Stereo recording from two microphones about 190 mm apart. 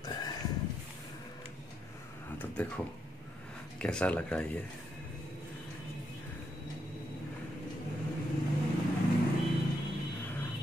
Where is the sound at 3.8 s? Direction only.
5° left (ahead or behind).